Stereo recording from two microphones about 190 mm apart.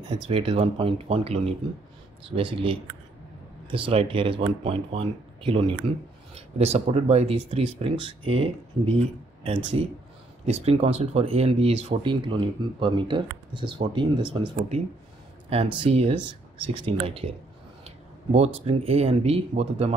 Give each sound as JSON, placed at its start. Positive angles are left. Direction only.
{"t": 0.1, "sound": "speech", "side_deg": -30}
{"t": 15.8, "sound": "speech", "side_deg": -30}